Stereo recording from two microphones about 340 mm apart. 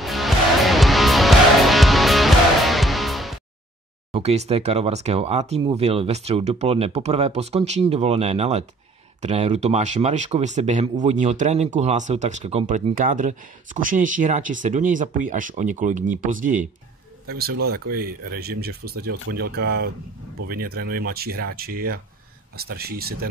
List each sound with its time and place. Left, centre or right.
0.0 s music: centre
4.1 s speech: centre